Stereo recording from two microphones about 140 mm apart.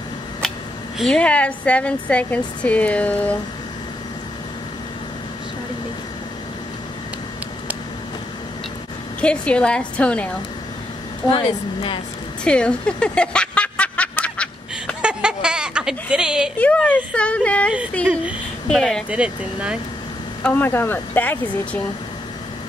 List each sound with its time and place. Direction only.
0.9 s a woman's voice: 5° left (ahead or behind)
9.2 s a woman's voice: 10° left (ahead or behind)
11.2 s speech: 40° left (ahead or behind)
12.4 s snicker: 5° left (ahead or behind)
15.0 s speech: 5° right (ahead or behind)
16.5 s a woman's voice: 10° left (ahead or behind)
19.0 s speech: 10° right (ahead or behind)
20.4 s a woman's voice: 10° left (ahead or behind)